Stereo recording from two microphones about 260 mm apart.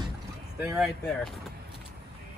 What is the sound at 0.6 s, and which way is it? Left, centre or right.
Speech, centre.